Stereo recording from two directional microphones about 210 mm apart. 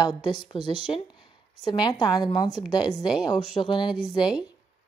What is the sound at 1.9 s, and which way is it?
Speech, 20° left (ahead or behind).